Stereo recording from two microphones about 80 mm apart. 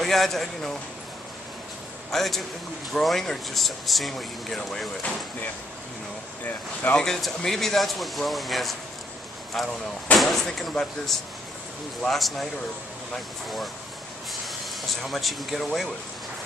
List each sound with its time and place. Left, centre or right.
0.0 s speech: centre
2.0 s a man's voice: centre
6.4 s speech: left
7.0 s speech: centre
15.0 s speech: centre